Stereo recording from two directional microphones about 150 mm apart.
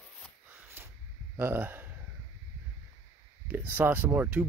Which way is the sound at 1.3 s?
15° right (ahead or behind).